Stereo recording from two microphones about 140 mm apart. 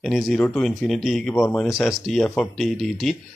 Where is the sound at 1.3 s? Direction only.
20° left (ahead or behind).